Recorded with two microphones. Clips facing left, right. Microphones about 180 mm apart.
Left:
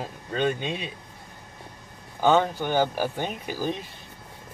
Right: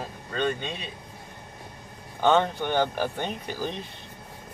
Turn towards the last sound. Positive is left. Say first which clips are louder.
# left 2 dB
turn(degrees=10)  # may be behind; listen again after turning